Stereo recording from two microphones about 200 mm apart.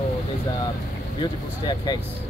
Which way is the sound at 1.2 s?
20° left (ahead or behind).